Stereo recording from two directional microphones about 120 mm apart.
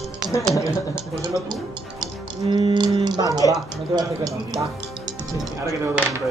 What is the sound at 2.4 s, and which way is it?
Speech, 35° right (ahead or behind).